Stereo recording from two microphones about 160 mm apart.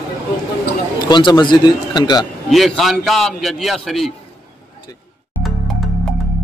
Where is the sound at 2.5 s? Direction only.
Centre (ahead or behind).